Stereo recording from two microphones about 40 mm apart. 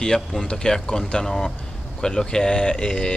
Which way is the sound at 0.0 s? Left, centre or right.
Centre.